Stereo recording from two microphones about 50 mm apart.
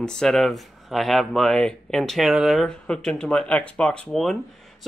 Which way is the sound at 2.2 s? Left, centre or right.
Centre.